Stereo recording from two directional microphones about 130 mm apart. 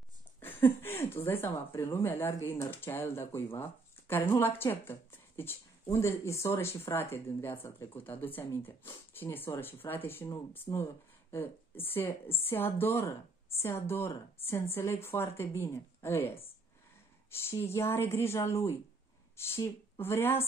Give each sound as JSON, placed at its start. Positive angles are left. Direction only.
{"t": 0.4, "sound": "a woman's voice", "side_deg": 15}